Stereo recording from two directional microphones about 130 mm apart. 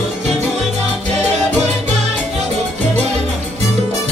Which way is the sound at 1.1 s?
60° right (ahead or behind).